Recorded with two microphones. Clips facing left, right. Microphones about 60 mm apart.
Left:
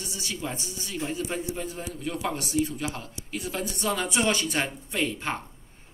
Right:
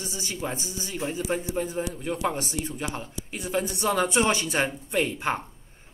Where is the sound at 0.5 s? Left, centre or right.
Centre.